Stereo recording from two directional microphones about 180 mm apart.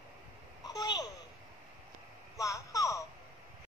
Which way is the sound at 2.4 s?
15° left (ahead or behind).